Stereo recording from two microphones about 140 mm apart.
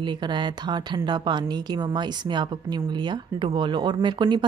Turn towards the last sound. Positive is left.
turn(degrees=-35)  # may be behind; listen again after turning